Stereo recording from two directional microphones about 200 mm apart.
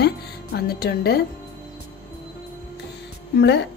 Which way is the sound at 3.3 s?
60° left (ahead or behind).